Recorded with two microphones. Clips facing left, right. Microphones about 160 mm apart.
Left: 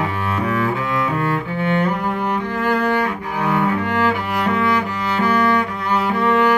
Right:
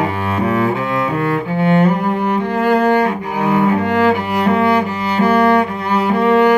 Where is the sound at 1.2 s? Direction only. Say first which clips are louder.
Right 4 dB; 25° right (ahead or behind).